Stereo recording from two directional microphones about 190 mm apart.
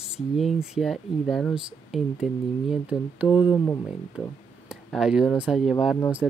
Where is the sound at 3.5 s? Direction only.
15° left (ahead or behind).